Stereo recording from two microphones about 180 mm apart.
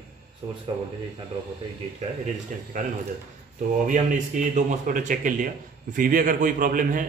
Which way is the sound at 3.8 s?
45° right (ahead or behind).